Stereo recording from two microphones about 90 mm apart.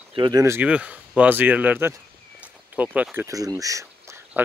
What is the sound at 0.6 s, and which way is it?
Speech, 15° right (ahead or behind).